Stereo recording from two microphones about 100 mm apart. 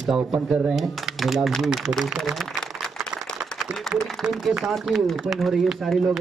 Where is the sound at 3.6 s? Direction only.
Centre (ahead or behind).